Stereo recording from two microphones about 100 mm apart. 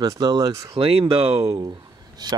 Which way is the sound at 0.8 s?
70° right (ahead or behind).